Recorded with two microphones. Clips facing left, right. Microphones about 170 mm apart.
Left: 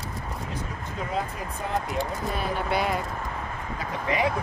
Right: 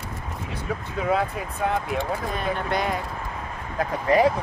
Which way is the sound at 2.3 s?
5° left (ahead or behind).